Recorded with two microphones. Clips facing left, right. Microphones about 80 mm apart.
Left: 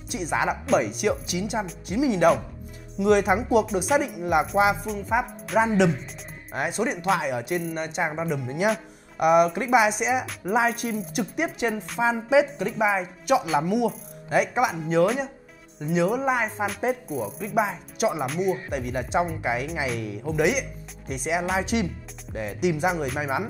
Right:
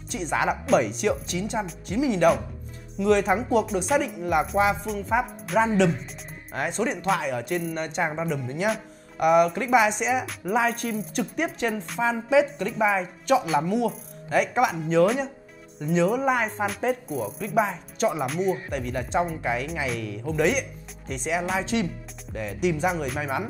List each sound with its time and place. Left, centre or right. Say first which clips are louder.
0.1 s a woman's voice: even; centre
18.7 s a woman's voice: left 1 dB; centre